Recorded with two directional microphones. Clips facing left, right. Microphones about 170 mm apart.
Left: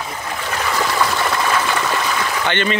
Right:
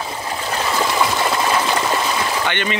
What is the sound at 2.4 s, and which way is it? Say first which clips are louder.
Speech: left 2 dB; 15° right (ahead or behind).